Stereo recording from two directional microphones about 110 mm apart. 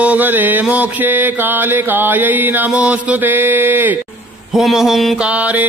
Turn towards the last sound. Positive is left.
turn(degrees=-15)  # may be behind; listen again after turning